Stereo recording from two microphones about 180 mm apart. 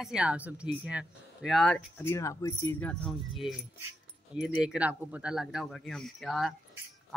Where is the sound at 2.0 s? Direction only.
15° left (ahead or behind).